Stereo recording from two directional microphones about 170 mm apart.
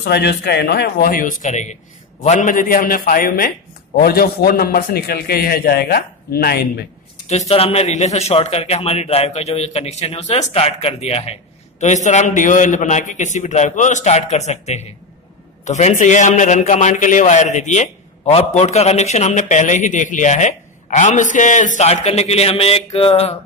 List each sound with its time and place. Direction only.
0.0 s a man's voice: 80° left
7.2 s a man's voice: 40° left (ahead or behind)